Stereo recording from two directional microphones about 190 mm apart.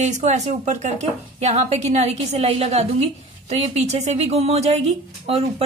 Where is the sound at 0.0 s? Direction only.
40° right (ahead or behind).